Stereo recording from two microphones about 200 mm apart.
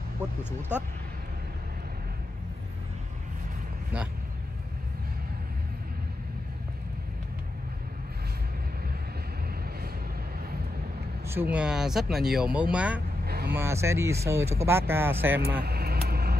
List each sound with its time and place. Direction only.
0.4 s speech: 10° left (ahead or behind)
11.2 s speech: 10° right (ahead or behind)
13.2 s vehicle: 50° right (ahead or behind)
13.6 s speech: 15° right (ahead or behind)
15.6 s vehicle: 50° right (ahead or behind)